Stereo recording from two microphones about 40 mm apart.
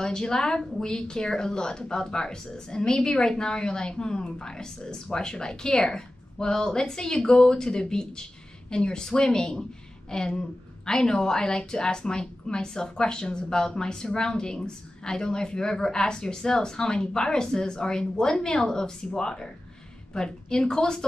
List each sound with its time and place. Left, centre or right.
0.0 s a woman's voice: centre